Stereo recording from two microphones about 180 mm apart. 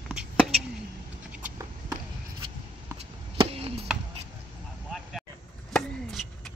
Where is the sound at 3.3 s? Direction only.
35° right (ahead or behind).